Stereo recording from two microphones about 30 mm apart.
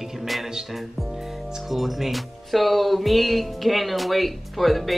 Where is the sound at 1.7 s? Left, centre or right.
Centre.